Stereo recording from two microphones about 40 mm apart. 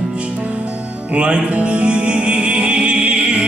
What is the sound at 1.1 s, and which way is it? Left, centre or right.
Music, right.